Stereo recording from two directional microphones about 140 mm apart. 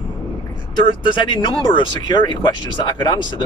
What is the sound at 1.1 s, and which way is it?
Speech, 35° left (ahead or behind).